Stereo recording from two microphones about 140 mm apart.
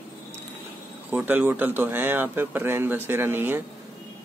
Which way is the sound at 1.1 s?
15° right (ahead or behind).